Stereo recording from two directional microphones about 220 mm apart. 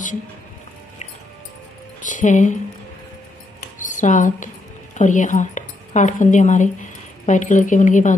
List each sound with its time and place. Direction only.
2.0 s speech: 35° left (ahead or behind)
3.8 s speech: 35° left (ahead or behind)